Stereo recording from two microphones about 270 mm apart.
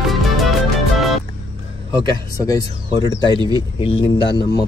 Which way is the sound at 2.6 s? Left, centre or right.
Centre.